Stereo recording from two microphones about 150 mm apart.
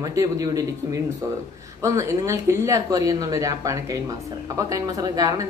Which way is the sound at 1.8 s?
20° right (ahead or behind).